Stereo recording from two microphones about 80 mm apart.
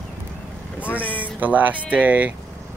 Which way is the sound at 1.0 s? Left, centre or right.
Left.